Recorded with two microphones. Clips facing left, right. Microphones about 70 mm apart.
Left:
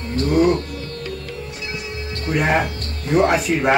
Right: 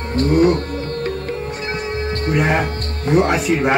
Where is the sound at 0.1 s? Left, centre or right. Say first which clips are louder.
Right 2 dB; right.